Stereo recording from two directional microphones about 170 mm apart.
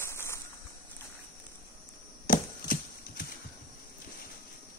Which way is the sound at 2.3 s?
55° left (ahead or behind).